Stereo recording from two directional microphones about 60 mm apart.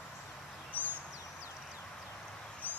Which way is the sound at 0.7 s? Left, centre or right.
Left.